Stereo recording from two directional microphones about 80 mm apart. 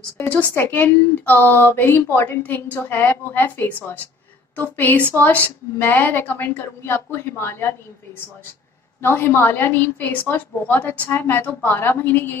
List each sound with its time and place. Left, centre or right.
0.2 s a woman's voice: centre
9.0 s a woman's voice: left